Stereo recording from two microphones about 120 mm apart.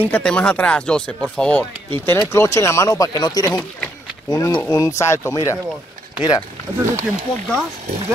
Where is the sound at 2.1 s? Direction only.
25° left (ahead or behind).